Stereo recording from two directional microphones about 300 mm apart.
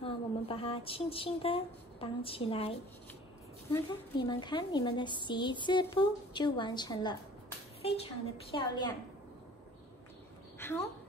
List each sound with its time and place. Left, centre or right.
0.0 s a sound: centre
3.7 s a woman's voice: centre
10.6 s a woman's voice: centre